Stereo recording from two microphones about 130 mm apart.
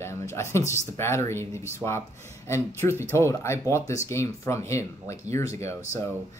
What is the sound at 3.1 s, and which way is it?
Speech, 20° left (ahead or behind).